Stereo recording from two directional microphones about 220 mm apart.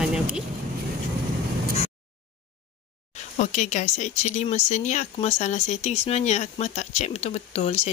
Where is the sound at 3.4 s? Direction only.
35° left (ahead or behind).